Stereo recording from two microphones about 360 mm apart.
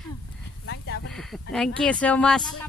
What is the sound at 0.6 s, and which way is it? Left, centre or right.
Snake, left.